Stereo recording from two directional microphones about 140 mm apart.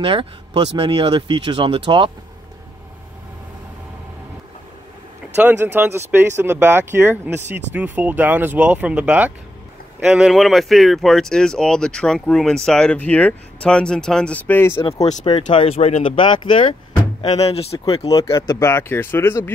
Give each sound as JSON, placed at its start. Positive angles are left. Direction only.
{"t": 0.0, "sound": "speech", "side_deg": -40}
{"t": 5.4, "sound": "speech", "side_deg": -15}
{"t": 15.5, "sound": "speech", "side_deg": 45}
{"t": 17.3, "sound": "speech", "side_deg": 45}
{"t": 18.5, "sound": "speech", "side_deg": 20}